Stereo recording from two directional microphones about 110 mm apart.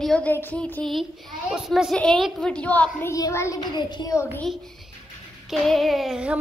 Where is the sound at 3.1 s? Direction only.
30° left (ahead or behind).